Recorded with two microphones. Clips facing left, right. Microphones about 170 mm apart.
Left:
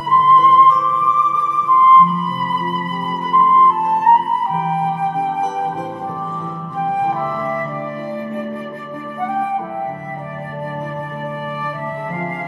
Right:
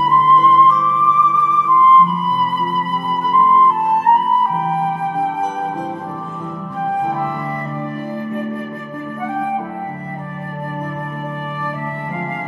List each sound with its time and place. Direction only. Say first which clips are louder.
1.3 s music: right 1 dB; 10° left (ahead or behind)